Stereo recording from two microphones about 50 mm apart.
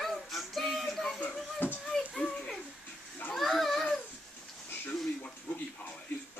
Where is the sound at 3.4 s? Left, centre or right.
Centre.